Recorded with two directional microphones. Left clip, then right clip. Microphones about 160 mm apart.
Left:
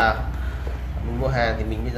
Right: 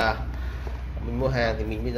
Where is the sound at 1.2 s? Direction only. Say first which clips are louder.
Left 2 dB; 40° right (ahead or behind).